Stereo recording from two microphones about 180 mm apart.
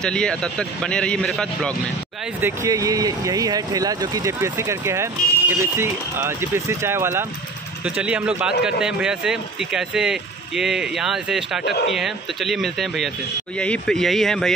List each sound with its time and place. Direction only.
0.0 s a man's voice: 5° left (ahead or behind)
2.4 s a man's voice: 20° right (ahead or behind); by 14.5 s 5° left (ahead or behind)